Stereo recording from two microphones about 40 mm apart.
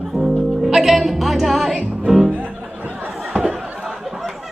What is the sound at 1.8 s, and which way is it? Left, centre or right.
Music, right.